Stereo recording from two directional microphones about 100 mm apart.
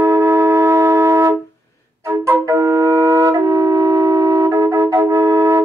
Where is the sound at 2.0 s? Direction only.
30° right (ahead or behind).